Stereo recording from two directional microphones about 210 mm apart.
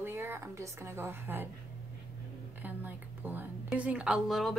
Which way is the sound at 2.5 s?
10° right (ahead or behind).